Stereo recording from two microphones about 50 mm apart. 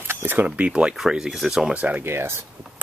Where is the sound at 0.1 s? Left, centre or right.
Right.